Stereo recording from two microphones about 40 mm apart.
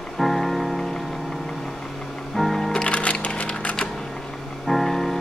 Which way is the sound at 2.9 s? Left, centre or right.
Left.